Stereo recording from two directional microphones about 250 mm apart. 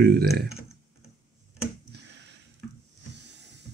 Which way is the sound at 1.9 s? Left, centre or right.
Right.